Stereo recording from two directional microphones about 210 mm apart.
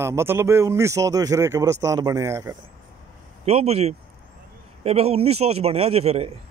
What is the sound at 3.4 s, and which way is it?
A man's voice, 30° right (ahead or behind).